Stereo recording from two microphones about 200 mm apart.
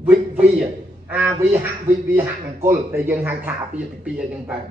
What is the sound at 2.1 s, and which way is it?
Speech, 10° right (ahead or behind).